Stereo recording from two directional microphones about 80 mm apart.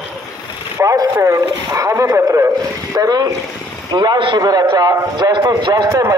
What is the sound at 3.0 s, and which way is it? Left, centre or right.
Speech, right.